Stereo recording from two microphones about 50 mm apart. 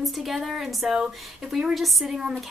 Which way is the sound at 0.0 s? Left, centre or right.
Centre.